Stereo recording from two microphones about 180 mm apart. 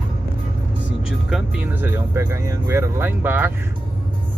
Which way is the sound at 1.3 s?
5° right (ahead or behind).